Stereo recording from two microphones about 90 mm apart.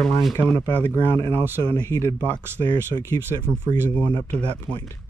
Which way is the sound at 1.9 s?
30° left (ahead or behind).